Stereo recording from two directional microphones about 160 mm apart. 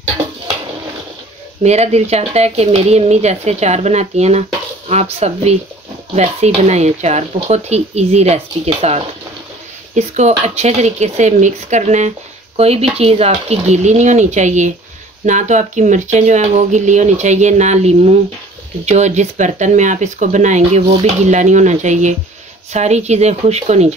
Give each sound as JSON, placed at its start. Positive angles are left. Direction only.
{"t": 1.6, "sound": "speech", "side_deg": -45}